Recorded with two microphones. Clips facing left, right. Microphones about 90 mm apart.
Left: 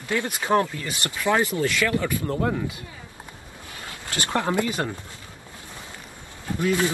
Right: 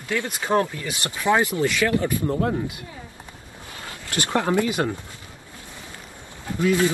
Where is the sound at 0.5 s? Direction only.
20° right (ahead or behind).